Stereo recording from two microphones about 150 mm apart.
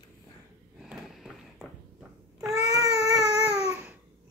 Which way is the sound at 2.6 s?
25° right (ahead or behind).